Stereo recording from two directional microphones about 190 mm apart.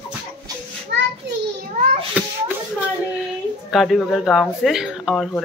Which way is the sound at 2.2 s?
5° right (ahead or behind).